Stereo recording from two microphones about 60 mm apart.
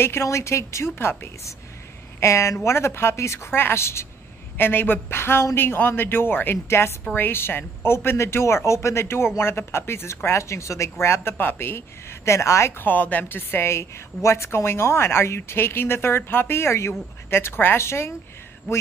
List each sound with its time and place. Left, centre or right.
0.0 s speech: left
2.1 s speech: left
4.6 s a woman's voice: left
12.7 s a woman's voice: left